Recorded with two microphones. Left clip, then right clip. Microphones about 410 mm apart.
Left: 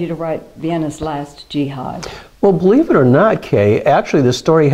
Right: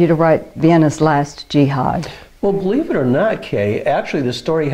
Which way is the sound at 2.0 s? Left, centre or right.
Left.